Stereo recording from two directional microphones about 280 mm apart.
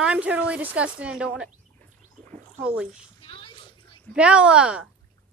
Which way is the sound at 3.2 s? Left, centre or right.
Centre.